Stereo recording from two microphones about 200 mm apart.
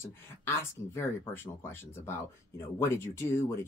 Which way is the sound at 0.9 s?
10° left (ahead or behind).